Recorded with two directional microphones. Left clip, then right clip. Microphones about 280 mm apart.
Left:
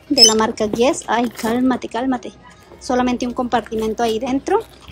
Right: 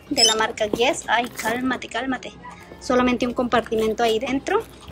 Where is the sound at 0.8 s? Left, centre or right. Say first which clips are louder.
Left 4 dB; centre.